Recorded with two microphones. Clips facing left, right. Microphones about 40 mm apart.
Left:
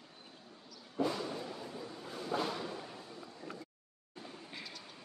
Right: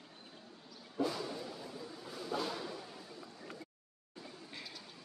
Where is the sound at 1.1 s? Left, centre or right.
Left.